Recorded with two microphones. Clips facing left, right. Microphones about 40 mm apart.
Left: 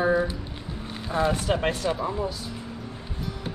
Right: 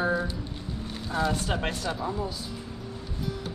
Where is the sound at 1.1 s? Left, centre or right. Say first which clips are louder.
Left 3 dB; left.